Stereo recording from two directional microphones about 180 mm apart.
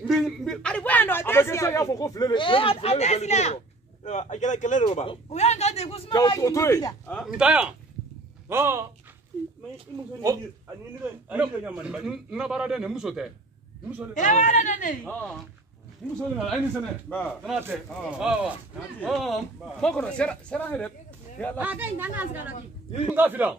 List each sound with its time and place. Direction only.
0.0 s a man's voice: centre (ahead or behind); by 6.1 s 35° left (ahead or behind)
6.1 s a man's voice: 20° left (ahead or behind)
7.3 s a man's voice: 5° right (ahead or behind)
11.2 s a man's voice: 5° right (ahead or behind)
14.1 s speech: 45° left (ahead or behind)
15.0 s a man's voice: 10° left (ahead or behind)
21.5 s a woman's voice: 10° right (ahead or behind)